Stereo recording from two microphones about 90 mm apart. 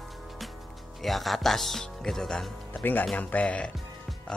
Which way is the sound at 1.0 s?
Centre (ahead or behind).